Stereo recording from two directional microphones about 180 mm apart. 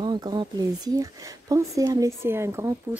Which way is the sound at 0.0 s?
25° right (ahead or behind).